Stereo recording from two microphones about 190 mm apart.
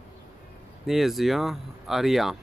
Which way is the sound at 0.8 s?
Centre (ahead or behind).